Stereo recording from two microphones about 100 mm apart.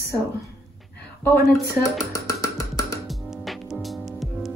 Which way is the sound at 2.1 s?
30° left (ahead or behind).